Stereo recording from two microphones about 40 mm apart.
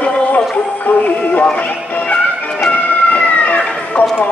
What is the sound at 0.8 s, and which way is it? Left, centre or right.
Synthetic singing, left.